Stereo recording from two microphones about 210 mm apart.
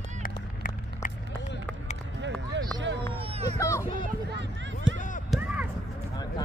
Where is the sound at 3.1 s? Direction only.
25° right (ahead or behind).